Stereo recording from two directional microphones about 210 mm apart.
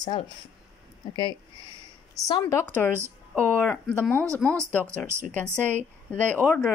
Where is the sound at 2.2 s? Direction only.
15° left (ahead or behind); by 4.6 s 5° right (ahead or behind).